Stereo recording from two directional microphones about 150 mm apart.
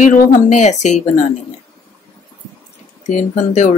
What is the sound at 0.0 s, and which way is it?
A woman's voice, 55° left (ahead or behind).